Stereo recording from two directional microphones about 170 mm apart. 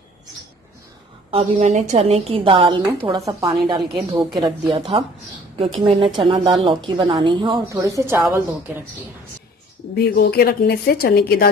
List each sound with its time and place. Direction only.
1.3 s a woman's voice: 45° right (ahead or behind)
3.1 s a woman's voice: 20° right (ahead or behind)
9.9 s a woman's voice: 65° left (ahead or behind)